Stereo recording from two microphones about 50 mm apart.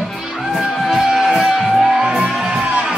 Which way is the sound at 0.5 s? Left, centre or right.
Centre.